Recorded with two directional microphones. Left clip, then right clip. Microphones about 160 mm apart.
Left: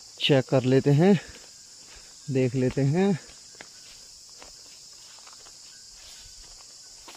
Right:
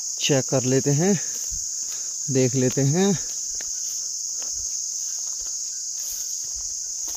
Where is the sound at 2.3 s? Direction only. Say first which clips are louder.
Right 4 dB; 20° right (ahead or behind).